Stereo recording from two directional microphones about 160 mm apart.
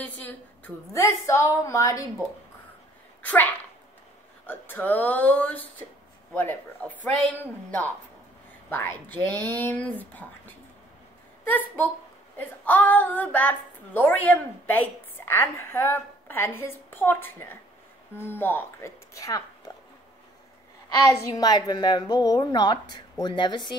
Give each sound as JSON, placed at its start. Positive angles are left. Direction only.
{"t": 0.0, "sound": "a woman's voice", "side_deg": 10}
{"t": 3.2, "sound": "sneeze", "side_deg": 10}
{"t": 4.5, "sound": "a woman's voice", "side_deg": 10}
{"t": 8.6, "sound": "a woman's voice", "side_deg": 15}
{"t": 21.1, "sound": "a woman's voice", "side_deg": 25}